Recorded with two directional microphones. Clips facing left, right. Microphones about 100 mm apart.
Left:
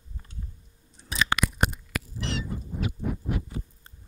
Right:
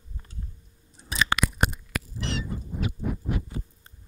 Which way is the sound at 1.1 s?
35° right (ahead or behind).